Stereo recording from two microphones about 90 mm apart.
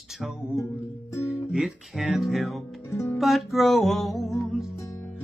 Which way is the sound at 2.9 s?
30° left (ahead or behind).